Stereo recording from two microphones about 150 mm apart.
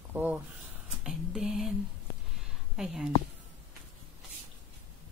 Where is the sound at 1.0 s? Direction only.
5° right (ahead or behind).